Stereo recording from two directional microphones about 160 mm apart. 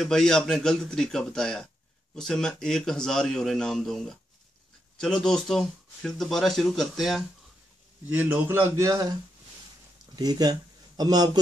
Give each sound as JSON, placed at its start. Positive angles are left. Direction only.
{"t": 0.0, "sound": "a man's voice", "side_deg": 5}
{"t": 10.1, "sound": "speech", "side_deg": -25}